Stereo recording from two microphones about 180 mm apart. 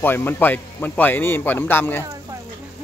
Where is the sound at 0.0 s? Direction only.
10° left (ahead or behind).